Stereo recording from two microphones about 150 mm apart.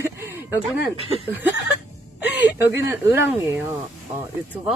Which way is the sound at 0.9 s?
40° right (ahead or behind).